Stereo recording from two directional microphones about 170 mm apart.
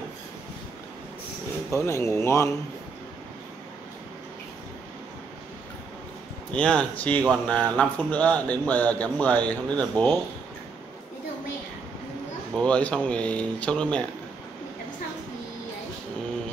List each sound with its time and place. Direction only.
1.7 s speech: 15° left (ahead or behind)
6.5 s speech: 5° left (ahead or behind)
12.5 s speech: 5° left (ahead or behind)